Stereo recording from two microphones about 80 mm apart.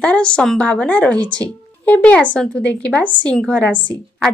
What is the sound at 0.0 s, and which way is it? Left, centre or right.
Speech, centre.